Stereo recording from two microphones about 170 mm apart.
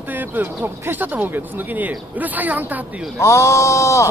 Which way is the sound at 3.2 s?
15° left (ahead or behind).